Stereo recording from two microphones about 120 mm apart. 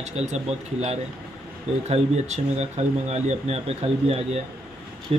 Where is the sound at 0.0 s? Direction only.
65° right (ahead or behind).